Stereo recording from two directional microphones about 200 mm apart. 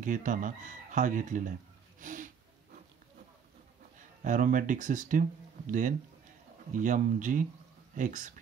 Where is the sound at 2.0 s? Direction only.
40° right (ahead or behind).